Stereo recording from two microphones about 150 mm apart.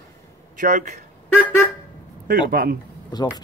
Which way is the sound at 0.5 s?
60° right (ahead or behind).